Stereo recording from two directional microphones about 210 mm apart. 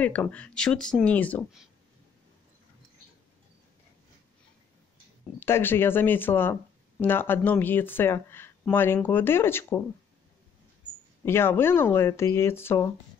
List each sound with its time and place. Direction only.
0.0 s speech: 5° left (ahead or behind)
5.4 s speech: 10° left (ahead or behind)
11.2 s speech: 10° left (ahead or behind)